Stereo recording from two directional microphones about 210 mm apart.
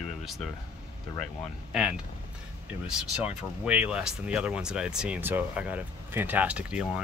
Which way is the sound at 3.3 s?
5° right (ahead or behind).